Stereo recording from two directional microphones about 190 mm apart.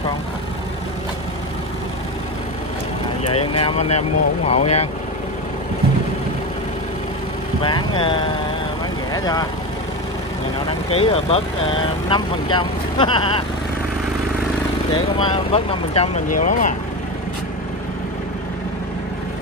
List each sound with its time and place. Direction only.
3.3 s speech: 30° left (ahead or behind)
7.6 s speech: 25° left (ahead or behind)
10.9 s speech: 30° left (ahead or behind)
15.1 s speech: 25° left (ahead or behind)
16.3 s speech: 40° left (ahead or behind)